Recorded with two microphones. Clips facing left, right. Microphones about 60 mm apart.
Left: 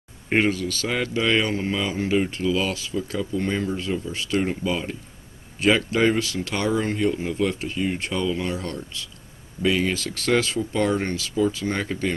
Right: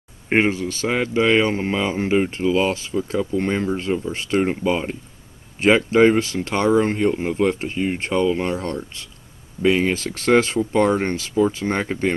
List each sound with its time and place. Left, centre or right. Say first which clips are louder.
0.3 s speech: right 3 dB; right